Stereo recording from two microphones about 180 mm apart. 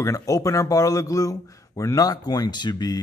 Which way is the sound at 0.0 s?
20° left (ahead or behind).